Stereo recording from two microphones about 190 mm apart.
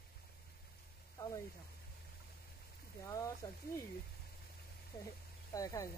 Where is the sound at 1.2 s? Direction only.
15° left (ahead or behind).